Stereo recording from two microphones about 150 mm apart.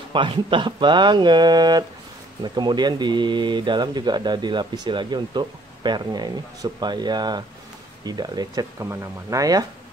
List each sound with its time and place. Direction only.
0.1 s speech: 35° right (ahead or behind)